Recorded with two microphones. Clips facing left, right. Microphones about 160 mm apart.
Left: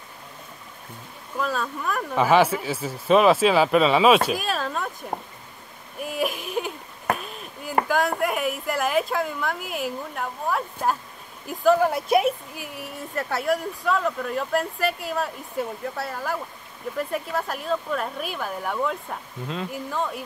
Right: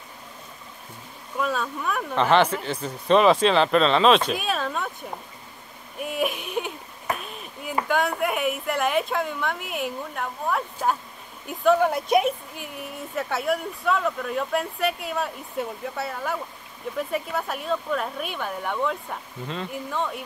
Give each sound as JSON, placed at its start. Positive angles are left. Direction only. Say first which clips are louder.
{"t": 1.3, "sound": "a woman's voice", "louder": "even", "side_deg": 0}
{"t": 7.2, "sound": "chop", "louder": "left 1 dB", "side_deg": 0}
{"t": 7.9, "sound": "a woman's voice", "louder": "right 2 dB", "side_deg": 0}